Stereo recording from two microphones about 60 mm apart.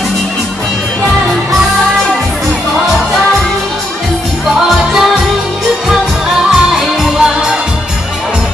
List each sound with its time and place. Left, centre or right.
4.6 s music: centre
6.5 s music: centre